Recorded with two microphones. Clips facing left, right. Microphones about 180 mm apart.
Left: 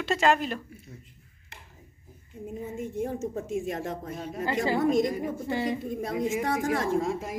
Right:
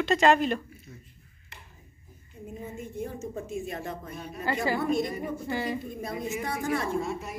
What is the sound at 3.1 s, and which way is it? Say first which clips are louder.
A woman's voice: left 4 dB; 90° left.